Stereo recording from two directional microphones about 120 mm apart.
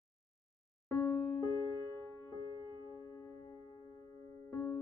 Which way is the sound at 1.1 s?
25° left (ahead or behind).